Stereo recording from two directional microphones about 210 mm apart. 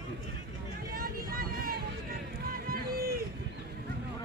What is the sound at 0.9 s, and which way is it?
Vehicle, 45° right (ahead or behind).